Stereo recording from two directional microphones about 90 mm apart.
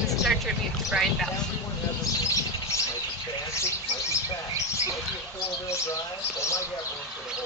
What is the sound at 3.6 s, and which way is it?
Bird, 30° left (ahead or behind).